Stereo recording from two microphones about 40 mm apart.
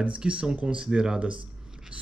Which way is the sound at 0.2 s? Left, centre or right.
Right.